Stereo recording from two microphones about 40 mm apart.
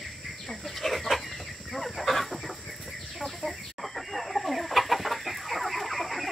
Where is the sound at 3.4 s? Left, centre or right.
Centre.